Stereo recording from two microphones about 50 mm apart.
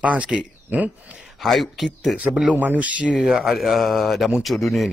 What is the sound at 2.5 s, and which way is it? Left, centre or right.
Speech, right.